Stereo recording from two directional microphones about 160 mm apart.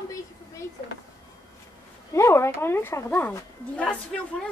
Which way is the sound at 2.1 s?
15° left (ahead or behind).